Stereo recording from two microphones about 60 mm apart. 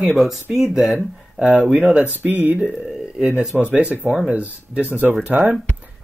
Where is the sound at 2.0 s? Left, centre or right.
Right.